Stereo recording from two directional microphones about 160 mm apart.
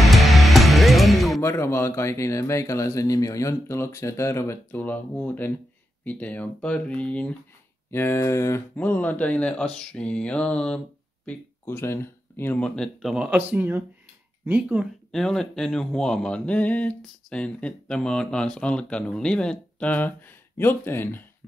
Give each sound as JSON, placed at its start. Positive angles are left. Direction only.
{"t": 0.0, "sound": "music", "side_deg": 0}
{"t": 1.4, "sound": "speech", "side_deg": 15}